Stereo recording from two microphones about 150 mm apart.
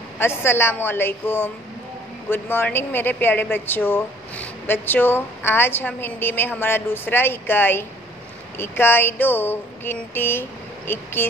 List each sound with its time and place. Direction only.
0.2 s speech: 15° left (ahead or behind)